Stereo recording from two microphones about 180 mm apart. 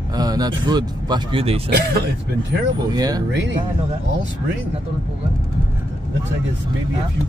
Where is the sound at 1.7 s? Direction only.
60° right (ahead or behind).